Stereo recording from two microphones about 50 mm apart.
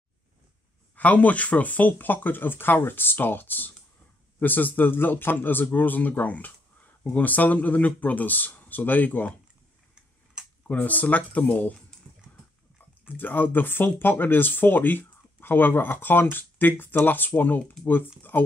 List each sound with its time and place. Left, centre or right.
0.9 s speech: left
10.4 s a sound: centre
10.7 s speech: left
13.1 s speech: left